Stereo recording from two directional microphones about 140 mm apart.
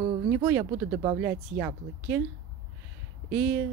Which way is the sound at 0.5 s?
20° right (ahead or behind).